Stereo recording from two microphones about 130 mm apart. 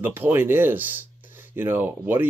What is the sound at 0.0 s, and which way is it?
Speech, 15° right (ahead or behind).